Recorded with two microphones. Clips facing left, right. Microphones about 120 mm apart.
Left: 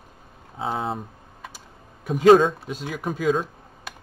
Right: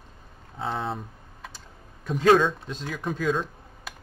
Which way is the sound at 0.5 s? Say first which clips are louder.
Left 3 dB; 5° left (ahead or behind).